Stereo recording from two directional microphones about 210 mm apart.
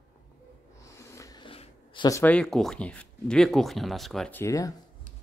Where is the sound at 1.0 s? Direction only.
15° left (ahead or behind).